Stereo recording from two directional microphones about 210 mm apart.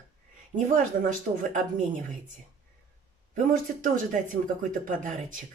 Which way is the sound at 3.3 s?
40° right (ahead or behind).